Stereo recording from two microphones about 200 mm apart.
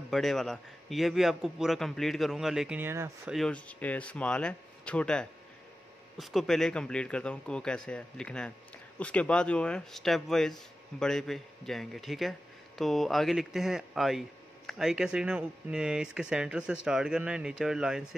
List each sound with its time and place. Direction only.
0.1 s speech: centre (ahead or behind)
3.3 s speech: 5° left (ahead or behind)